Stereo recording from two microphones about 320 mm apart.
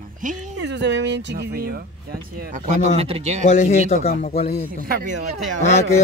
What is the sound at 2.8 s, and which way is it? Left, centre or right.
Speech, centre.